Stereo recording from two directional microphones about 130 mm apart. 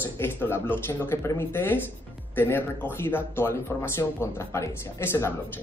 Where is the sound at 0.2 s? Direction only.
15° left (ahead or behind).